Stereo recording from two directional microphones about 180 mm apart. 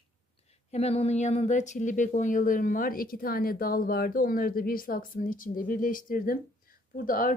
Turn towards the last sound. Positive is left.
turn(degrees=50)  # may be behind; listen again after turning